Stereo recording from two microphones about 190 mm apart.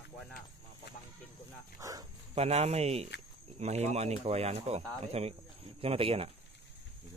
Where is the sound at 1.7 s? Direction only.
15° right (ahead or behind).